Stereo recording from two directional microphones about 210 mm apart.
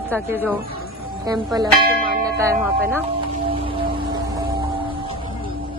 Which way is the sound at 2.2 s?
15° right (ahead or behind).